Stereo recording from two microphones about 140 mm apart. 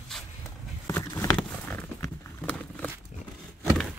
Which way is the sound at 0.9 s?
15° left (ahead or behind).